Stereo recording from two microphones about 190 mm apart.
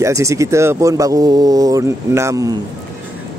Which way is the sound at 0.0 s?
15° right (ahead or behind).